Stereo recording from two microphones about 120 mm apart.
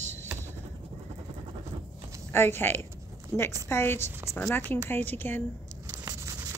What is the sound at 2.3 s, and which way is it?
Speech, 20° left (ahead or behind).